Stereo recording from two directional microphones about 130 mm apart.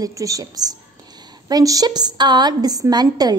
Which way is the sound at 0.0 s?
25° right (ahead or behind).